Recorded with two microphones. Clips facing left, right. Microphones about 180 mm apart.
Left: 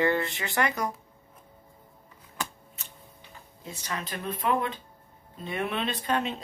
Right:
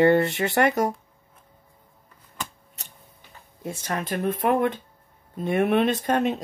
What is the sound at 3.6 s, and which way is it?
Speech, 55° right (ahead or behind).